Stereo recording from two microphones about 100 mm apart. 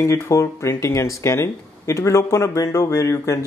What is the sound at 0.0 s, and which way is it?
Speech, 30° left (ahead or behind).